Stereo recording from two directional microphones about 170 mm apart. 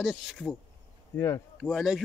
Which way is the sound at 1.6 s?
Centre (ahead or behind).